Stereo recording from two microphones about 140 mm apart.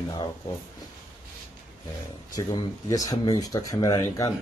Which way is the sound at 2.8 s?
25° left (ahead or behind).